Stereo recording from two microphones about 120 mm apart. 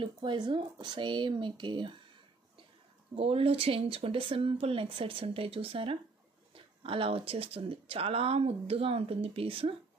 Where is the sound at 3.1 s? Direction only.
50° right (ahead or behind).